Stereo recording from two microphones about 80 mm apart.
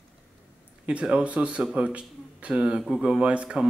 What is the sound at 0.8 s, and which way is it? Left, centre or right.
Speech, centre.